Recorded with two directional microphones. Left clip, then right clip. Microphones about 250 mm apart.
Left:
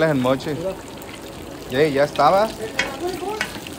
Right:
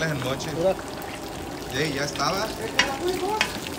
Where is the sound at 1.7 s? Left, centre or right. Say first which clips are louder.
Left 10 dB; centre.